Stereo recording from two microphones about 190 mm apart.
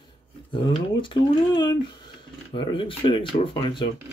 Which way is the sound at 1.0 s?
25° left (ahead or behind).